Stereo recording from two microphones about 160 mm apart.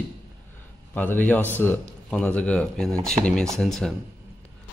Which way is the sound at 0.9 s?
10° left (ahead or behind).